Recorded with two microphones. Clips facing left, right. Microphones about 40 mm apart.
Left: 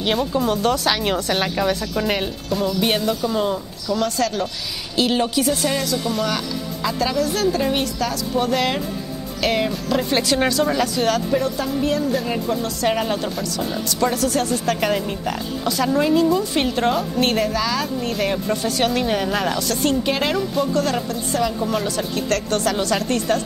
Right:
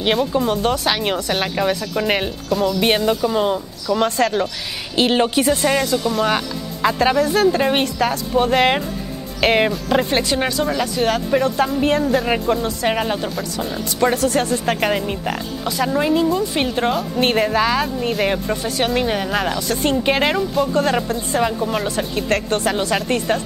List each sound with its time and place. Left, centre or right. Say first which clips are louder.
0.5 s speech: right 1 dB; centre
3.8 s speech: right 3 dB; right
10.1 s speech: even; centre
11.3 s speech: right 4 dB; right
12.6 s speech: right 1 dB; right
13.8 s speech: right 4 dB; right
14.7 s speech: right 1 dB; centre
17.3 s speech: right 4 dB; right; by 19.8 s centre
19.8 s speech: right 4 dB; right
21.5 s speech: right 1 dB; centre
21.8 s speech: right 2 dB; right